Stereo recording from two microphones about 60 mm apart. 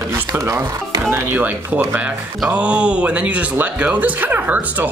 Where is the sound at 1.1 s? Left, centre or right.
Right.